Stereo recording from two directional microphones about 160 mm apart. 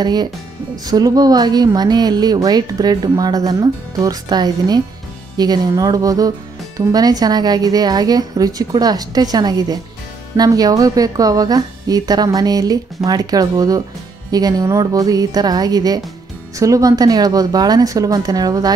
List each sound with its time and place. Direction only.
0.0 s speech: 25° right (ahead or behind)